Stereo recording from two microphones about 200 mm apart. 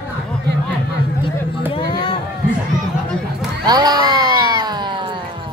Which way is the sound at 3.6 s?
20° right (ahead or behind).